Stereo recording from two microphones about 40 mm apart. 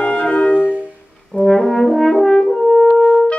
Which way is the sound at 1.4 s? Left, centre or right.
Centre.